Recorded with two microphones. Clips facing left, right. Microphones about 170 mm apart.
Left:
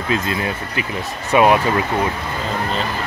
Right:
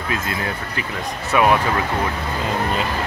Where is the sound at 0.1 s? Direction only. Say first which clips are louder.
Left 4 dB; 20° left (ahead or behind).